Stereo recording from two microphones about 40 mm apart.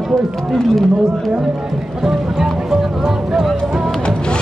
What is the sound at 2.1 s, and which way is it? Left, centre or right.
Music, centre.